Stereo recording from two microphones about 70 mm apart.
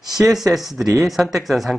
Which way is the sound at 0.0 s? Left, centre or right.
Centre.